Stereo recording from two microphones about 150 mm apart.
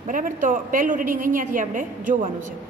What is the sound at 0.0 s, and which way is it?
A woman's voice, 60° right (ahead or behind).